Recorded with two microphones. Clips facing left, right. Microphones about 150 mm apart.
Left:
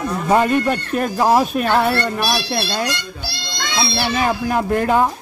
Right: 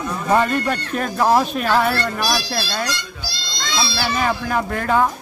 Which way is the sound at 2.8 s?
60° left (ahead or behind).